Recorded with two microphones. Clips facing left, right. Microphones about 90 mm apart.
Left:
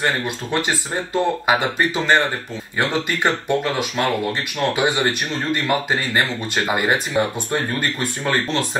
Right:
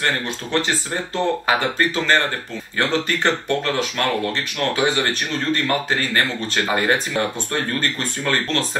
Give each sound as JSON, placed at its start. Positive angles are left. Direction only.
{"t": 0.0, "sound": "speech", "side_deg": 15}